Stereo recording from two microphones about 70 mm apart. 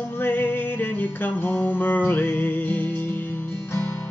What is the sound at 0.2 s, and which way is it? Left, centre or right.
Music, left.